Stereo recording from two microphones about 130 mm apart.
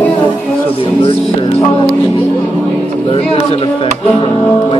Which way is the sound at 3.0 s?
45° left (ahead or behind).